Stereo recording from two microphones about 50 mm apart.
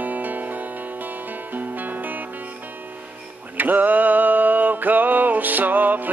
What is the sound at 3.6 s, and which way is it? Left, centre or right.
Music, right.